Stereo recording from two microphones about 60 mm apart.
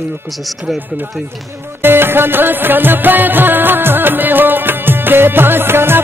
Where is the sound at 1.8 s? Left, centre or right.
Right.